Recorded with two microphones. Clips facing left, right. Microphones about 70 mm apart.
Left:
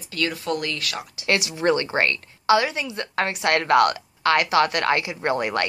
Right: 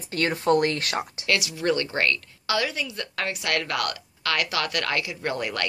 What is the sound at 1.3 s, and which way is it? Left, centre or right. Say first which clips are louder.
A woman's voice: left 4 dB; left.